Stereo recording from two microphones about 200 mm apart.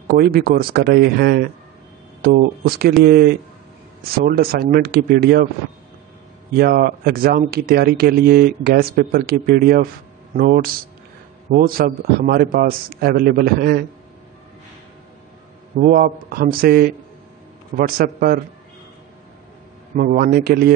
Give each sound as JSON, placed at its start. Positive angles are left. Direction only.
{"t": 0.1, "sound": "speech", "side_deg": -50}
{"t": 6.5, "sound": "speech", "side_deg": -50}
{"t": 15.8, "sound": "speech", "side_deg": -45}
{"t": 20.0, "sound": "speech", "side_deg": -45}